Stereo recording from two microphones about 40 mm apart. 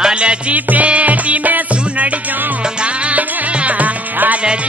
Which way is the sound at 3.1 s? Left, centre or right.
Right.